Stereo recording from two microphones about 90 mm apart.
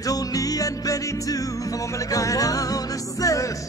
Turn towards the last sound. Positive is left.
turn(degrees=40)  # may be behind; listen again after turning